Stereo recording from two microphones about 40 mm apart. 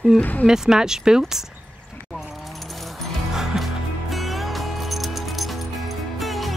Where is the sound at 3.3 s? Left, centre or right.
Centre.